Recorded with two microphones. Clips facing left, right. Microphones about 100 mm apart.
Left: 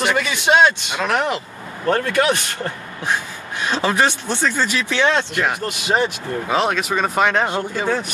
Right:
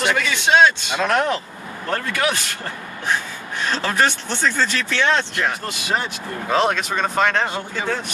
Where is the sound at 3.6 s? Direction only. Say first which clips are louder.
Left 2 dB; 15° left (ahead or behind).